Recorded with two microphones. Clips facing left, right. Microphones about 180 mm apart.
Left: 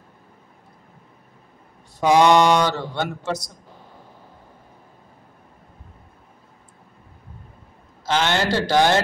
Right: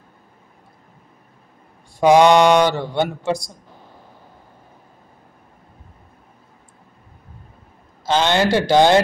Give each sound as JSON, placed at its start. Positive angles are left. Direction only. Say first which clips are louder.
{"t": 2.0, "sound": "mantra", "louder": "right 3 dB", "side_deg": -15}
{"t": 8.1, "sound": "mantra", "louder": "right 4 dB", "side_deg": -15}